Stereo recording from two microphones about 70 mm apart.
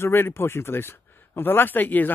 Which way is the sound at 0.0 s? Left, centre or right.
Left.